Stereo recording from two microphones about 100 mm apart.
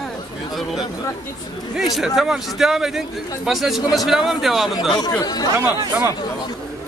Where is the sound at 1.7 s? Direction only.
5° right (ahead or behind).